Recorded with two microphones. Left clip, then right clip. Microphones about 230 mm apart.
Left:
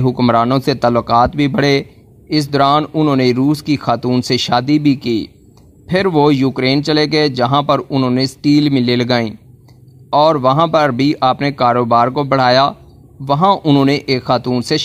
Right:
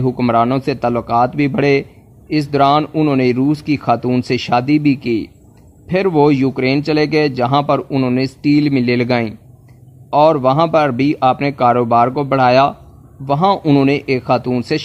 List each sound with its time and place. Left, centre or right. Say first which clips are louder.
0.0 s speech: left 1 dB; centre